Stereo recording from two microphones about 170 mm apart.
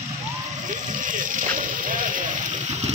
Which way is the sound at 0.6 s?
50° right (ahead or behind).